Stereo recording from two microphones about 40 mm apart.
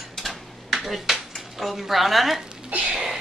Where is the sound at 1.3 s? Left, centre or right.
Centre.